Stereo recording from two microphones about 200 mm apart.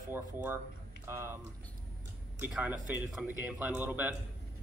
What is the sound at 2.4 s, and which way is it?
Speech, 5° right (ahead or behind).